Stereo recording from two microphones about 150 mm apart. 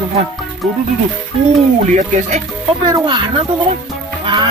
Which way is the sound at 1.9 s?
50° right (ahead or behind).